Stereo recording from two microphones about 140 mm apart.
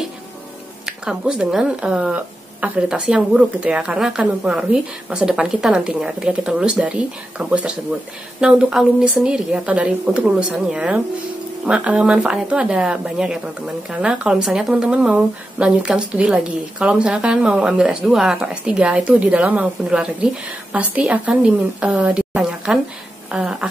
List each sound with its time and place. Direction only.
0.8 s speech: 5° right (ahead or behind)